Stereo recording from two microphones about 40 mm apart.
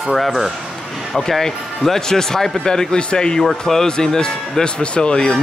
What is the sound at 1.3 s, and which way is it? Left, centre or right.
A man's voice, centre.